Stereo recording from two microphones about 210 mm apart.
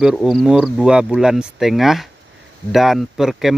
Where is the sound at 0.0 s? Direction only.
Centre (ahead or behind).